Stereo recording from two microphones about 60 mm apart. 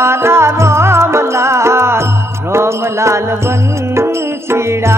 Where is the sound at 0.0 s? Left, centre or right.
Right.